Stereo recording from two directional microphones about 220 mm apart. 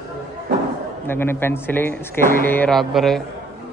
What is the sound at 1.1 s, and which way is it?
Speech, 10° left (ahead or behind).